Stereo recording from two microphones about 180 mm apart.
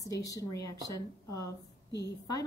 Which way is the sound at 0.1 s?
20° left (ahead or behind).